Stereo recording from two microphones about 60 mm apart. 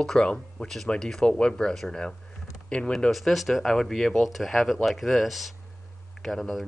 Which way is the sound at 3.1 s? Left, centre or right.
Centre.